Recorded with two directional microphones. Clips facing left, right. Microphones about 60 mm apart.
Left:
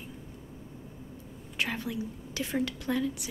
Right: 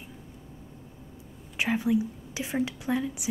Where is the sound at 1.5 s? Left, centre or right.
Centre.